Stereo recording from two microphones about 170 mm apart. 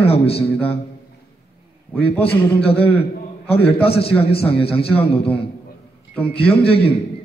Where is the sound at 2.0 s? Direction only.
35° left (ahead or behind).